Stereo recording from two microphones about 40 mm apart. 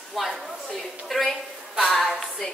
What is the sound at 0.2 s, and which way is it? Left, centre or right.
A woman's voice, centre.